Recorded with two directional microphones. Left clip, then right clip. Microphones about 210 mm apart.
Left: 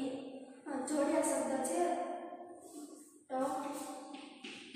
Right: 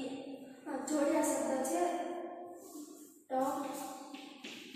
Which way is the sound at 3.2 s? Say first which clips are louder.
Right 2 dB; centre (ahead or behind).